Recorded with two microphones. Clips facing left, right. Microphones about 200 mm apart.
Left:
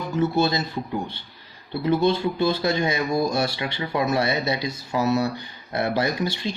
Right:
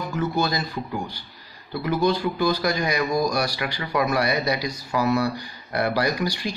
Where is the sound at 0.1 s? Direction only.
25° left (ahead or behind).